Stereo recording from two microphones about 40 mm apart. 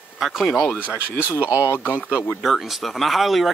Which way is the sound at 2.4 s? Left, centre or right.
Centre.